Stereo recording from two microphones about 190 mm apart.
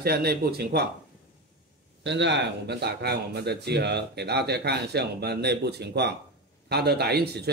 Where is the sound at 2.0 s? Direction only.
65° right (ahead or behind).